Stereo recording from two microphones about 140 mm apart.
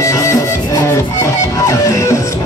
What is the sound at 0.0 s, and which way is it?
Music, 20° left (ahead or behind).